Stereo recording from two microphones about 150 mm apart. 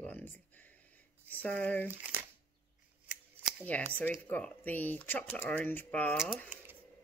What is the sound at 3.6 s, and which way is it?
Speech, 10° left (ahead or behind).